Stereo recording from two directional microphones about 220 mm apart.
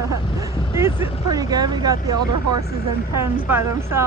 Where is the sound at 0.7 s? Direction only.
10° right (ahead or behind).